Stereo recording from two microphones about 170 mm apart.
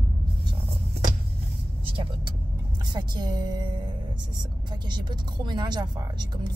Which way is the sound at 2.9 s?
25° right (ahead or behind).